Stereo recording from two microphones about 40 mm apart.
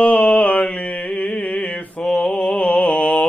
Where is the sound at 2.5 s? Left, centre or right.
Left.